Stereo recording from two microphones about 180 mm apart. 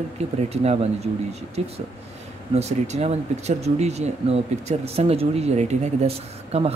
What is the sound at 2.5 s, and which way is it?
Speech, 40° right (ahead or behind).